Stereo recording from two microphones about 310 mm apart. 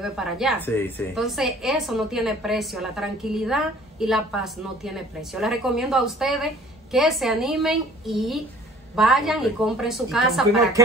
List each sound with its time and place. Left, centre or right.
0.0 s a woman's voice: centre